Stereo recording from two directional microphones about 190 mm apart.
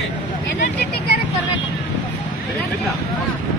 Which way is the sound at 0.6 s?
55° left (ahead or behind).